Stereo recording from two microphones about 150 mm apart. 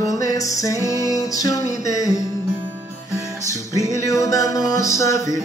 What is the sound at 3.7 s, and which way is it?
Music, 20° left (ahead or behind).